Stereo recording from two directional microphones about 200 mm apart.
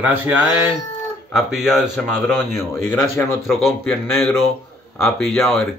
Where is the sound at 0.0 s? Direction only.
10° right (ahead or behind).